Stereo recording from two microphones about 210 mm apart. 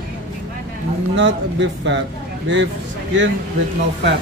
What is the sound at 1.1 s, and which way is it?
Speech, 55° right (ahead or behind).